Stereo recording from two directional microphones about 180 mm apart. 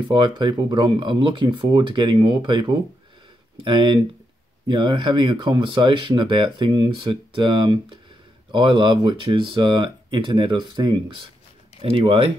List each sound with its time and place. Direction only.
0.1 s speech: 25° right (ahead or behind)